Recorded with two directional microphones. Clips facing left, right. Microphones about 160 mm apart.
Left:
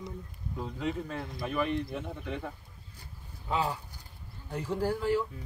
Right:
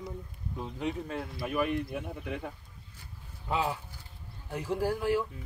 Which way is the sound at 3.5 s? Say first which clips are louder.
Even; 10° right (ahead or behind).